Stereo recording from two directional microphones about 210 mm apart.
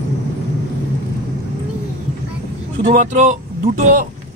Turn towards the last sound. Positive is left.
turn(degrees=-40)  # may be behind; listen again after turning